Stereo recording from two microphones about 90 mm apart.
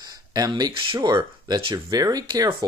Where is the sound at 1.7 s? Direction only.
45° right (ahead or behind).